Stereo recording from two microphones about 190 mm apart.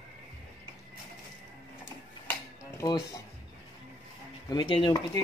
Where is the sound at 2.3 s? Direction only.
15° left (ahead or behind).